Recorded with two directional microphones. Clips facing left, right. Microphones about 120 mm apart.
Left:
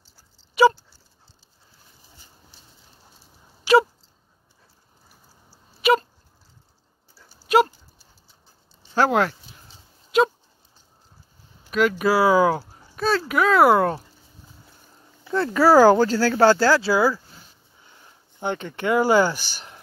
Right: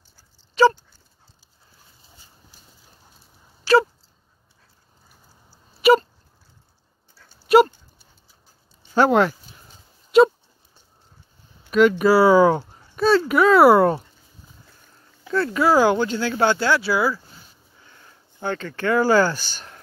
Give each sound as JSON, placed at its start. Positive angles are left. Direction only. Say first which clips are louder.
{"t": 0.6, "sound": "dog", "louder": "even", "side_deg": 15}
{"t": 3.7, "sound": "a sound", "louder": "even", "side_deg": 15}
{"t": 5.8, "sound": "a sound", "louder": "right 4 dB", "side_deg": 0}
{"t": 7.2, "sound": "dog", "louder": "left 1 dB", "side_deg": 10}
{"t": 7.4, "sound": "dog", "louder": "right 4 dB", "side_deg": 0}
{"t": 8.9, "sound": "speech", "louder": "right 3 dB", "side_deg": 0}
{"t": 10.1, "sound": "a sound", "louder": "right 6 dB", "side_deg": 0}
{"t": 11.7, "sound": "speech", "louder": "right 4 dB", "side_deg": 0}
{"t": 15.3, "sound": "speech", "louder": "left 3 dB", "side_deg": 30}
{"t": 17.8, "sound": "speech", "louder": "right 1 dB", "side_deg": 20}